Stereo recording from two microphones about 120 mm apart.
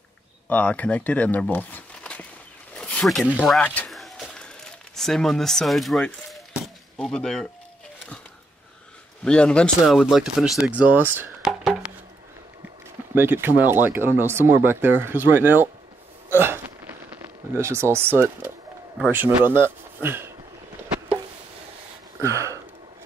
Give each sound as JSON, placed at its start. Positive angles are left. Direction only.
{"t": 0.5, "sound": "speech", "side_deg": 15}
{"t": 2.7, "sound": "a sound", "side_deg": 5}
{"t": 3.6, "sound": "speech", "side_deg": 10}
{"t": 3.9, "sound": "a sound", "side_deg": 0}
{"t": 4.9, "sound": "speech", "side_deg": 5}
{"t": 6.5, "sound": "chop", "side_deg": 0}
{"t": 9.2, "sound": "speech", "side_deg": 10}
{"t": 11.4, "sound": "a sound", "side_deg": -5}
{"t": 13.1, "sound": "speech", "side_deg": -20}
{"t": 16.3, "sound": "hiccup", "side_deg": -20}
{"t": 17.1, "sound": "speech", "side_deg": -20}
{"t": 22.2, "sound": "a sound", "side_deg": -25}